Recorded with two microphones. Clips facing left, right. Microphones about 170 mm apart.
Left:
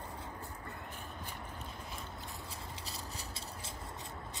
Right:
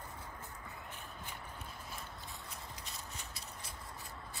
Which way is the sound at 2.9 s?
30° left (ahead or behind).